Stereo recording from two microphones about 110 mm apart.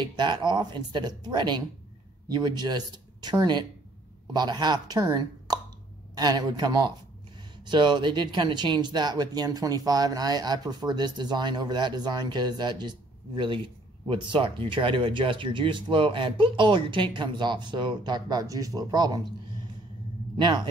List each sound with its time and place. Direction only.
0.0 s speech: 45° right (ahead or behind)
20.3 s speech: 45° right (ahead or behind)